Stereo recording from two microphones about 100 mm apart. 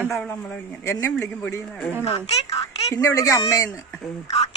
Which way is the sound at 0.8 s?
30° left (ahead or behind).